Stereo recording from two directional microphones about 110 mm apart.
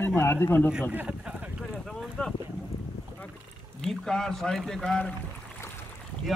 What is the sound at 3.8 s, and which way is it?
Speech, 5° left (ahead or behind).